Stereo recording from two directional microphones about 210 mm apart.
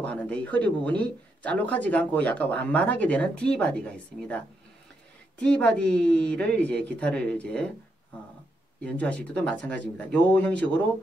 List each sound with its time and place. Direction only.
0.0 s speech: 5° left (ahead or behind)
5.4 s speech: 5° left (ahead or behind)
8.8 s speech: 5° left (ahead or behind)